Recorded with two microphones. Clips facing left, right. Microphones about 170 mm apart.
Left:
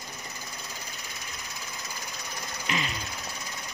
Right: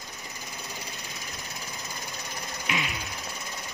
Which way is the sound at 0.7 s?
20° right (ahead or behind).